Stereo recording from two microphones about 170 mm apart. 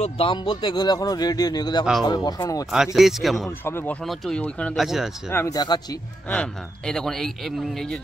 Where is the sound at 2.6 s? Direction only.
Centre (ahead or behind).